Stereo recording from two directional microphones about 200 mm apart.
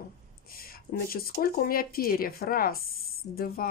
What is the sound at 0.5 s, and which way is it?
Speech, 50° left (ahead or behind).